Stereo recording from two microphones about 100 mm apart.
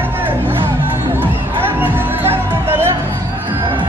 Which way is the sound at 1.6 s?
20° right (ahead or behind).